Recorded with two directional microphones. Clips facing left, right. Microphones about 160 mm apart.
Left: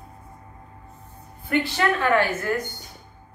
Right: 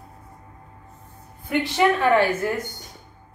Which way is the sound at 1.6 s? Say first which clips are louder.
Right 6 dB; 15° right (ahead or behind).